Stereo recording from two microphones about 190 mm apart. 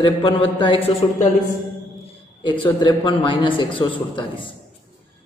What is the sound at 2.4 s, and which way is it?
A man's voice, 25° left (ahead or behind).